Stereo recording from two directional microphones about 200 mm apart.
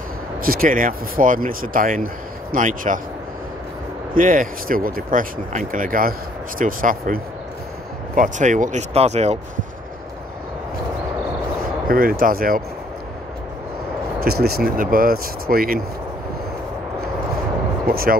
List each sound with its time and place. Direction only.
0.4 s speech: 45° right (ahead or behind)
4.1 s speech: 45° right (ahead or behind)
8.2 s speech: 40° right (ahead or behind)
11.9 s speech: 45° right (ahead or behind)
14.2 s speech: 50° right (ahead or behind)